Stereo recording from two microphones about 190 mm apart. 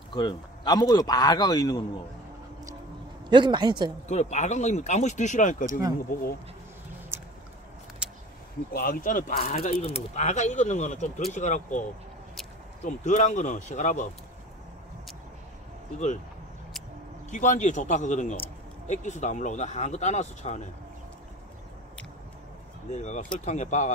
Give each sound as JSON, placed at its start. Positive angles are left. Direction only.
{"t": 0.1, "sound": "a man's voice", "side_deg": 25}
{"t": 3.3, "sound": "speech", "side_deg": -25}
{"t": 4.1, "sound": "speech", "side_deg": 35}
{"t": 5.7, "sound": "speech", "side_deg": -20}
{"t": 8.7, "sound": "speech", "side_deg": 50}
{"t": 12.8, "sound": "speech", "side_deg": 40}
{"t": 17.3, "sound": "speech", "side_deg": 40}
{"t": 22.8, "sound": "speech", "side_deg": 40}